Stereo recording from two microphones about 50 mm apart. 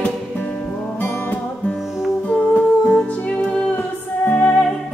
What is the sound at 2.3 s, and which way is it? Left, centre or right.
Music, left.